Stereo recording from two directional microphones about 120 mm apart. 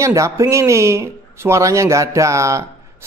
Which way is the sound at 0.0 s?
25° right (ahead or behind).